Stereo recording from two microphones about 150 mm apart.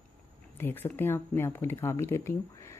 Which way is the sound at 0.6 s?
15° left (ahead or behind).